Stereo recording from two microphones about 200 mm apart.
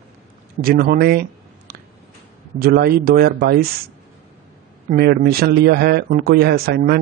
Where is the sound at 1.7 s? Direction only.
50° right (ahead or behind).